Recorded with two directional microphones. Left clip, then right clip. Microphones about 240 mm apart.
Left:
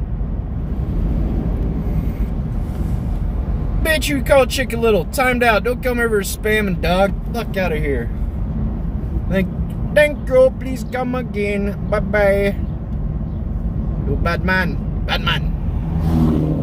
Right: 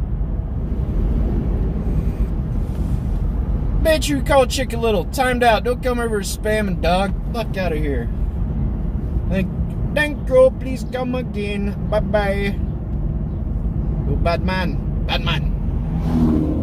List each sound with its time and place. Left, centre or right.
3.8 s speech: centre
9.9 s speech: left
14.2 s speech: left
16.1 s vehicle: left